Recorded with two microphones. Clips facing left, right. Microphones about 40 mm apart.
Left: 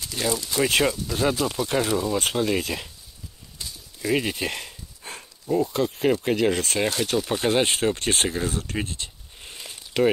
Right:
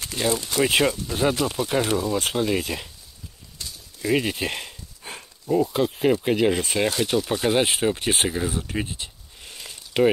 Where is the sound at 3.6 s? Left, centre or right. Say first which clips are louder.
Right 1 dB; centre.